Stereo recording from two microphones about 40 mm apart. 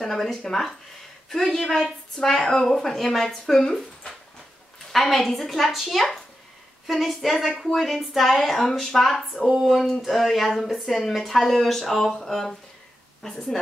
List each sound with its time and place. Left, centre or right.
0.0 s a woman's voice: centre
4.9 s a woman's voice: centre